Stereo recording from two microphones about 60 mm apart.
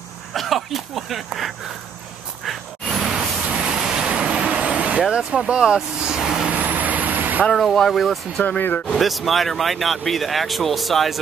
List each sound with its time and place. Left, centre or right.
0.3 s speech: centre
2.4 s a sound: centre
3.4 s vehicle: centre
6.5 s vehicle: right
7.5 s speech: centre
8.5 s speech: left
8.9 s speech: centre